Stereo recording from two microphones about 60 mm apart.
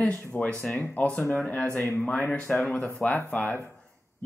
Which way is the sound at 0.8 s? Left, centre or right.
Left.